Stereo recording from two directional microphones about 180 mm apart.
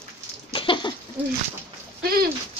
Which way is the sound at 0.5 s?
30° left (ahead or behind).